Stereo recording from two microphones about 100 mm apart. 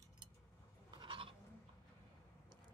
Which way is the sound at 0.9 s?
60° right (ahead or behind).